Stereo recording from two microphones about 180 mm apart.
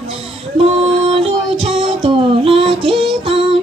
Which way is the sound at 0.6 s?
35° right (ahead or behind).